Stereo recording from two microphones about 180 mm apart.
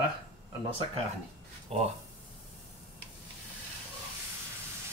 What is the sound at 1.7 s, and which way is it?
Speech, 35° right (ahead or behind).